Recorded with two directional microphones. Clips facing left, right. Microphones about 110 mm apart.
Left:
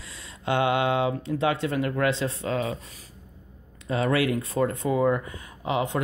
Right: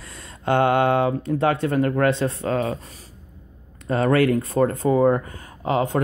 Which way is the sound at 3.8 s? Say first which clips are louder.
Right 5 dB; 50° right (ahead or behind).